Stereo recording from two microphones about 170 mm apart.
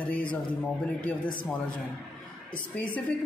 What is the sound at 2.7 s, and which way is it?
Speech, 5° left (ahead or behind).